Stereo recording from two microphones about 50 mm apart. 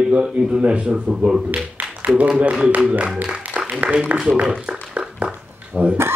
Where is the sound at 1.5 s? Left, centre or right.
Right.